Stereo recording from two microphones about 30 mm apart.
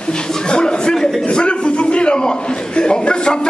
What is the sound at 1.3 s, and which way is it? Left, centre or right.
A man's voice, left.